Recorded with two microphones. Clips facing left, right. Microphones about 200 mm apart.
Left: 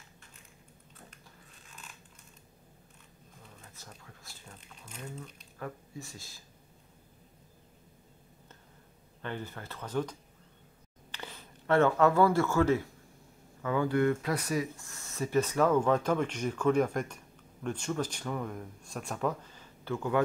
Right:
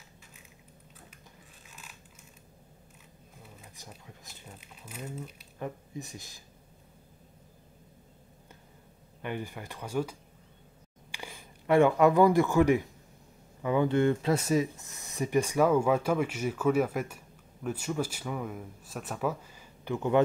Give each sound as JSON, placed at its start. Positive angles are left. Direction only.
{"t": 3.4, "sound": "speech", "side_deg": -10}
{"t": 4.6, "sound": "speech", "side_deg": -5}
{"t": 5.6, "sound": "speech", "side_deg": -20}
{"t": 9.2, "sound": "speech", "side_deg": -15}